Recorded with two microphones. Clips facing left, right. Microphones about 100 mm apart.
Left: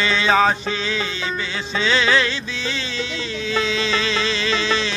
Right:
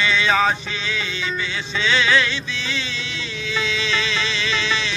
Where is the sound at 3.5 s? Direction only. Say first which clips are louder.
Left 2 dB; 35° left (ahead or behind).